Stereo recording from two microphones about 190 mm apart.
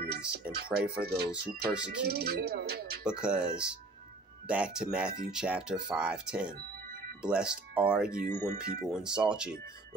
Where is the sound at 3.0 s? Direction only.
5° right (ahead or behind).